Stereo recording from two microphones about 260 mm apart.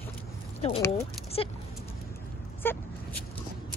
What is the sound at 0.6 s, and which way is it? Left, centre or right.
Speech, left.